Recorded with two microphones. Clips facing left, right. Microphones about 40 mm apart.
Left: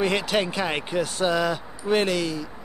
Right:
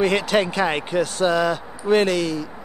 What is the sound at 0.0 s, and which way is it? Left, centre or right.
Speech, centre.